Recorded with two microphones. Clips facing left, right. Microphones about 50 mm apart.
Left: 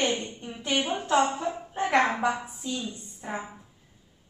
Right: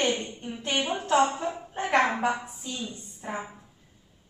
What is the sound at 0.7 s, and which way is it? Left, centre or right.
Speech, centre.